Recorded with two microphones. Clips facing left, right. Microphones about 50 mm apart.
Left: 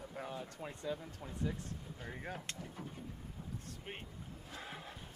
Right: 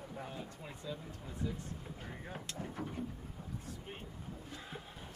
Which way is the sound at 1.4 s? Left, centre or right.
Left.